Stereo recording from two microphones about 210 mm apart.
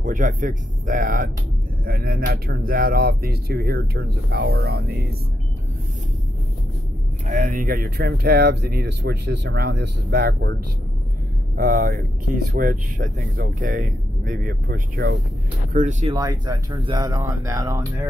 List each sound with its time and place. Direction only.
0.0 s speech: 40° right (ahead or behind)
7.2 s speech: 40° right (ahead or behind)
11.5 s speech: 45° right (ahead or behind)
16.1 s speech: 20° right (ahead or behind)